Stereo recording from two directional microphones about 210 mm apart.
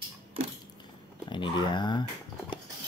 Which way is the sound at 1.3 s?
20° left (ahead or behind).